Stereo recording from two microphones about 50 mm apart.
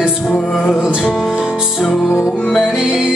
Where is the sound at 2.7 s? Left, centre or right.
Centre.